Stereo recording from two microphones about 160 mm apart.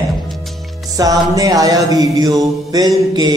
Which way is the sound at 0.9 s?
20° right (ahead or behind).